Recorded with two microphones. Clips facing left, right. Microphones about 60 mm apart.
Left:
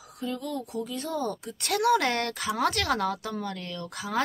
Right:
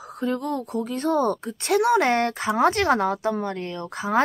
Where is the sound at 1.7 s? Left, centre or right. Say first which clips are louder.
Right 5 dB; right.